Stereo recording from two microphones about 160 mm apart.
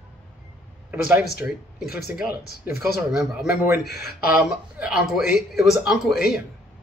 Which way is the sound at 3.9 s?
80° left.